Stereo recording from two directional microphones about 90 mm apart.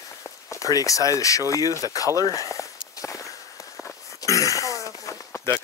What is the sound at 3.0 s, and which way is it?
Walk, 35° left (ahead or behind).